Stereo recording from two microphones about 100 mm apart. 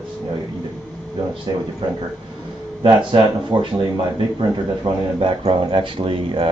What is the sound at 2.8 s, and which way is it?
Speech, 50° right (ahead or behind).